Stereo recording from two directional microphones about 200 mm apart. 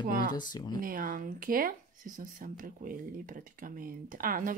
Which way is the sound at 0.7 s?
45° right (ahead or behind).